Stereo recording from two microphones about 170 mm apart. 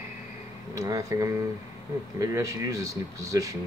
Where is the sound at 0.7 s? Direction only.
20° right (ahead or behind).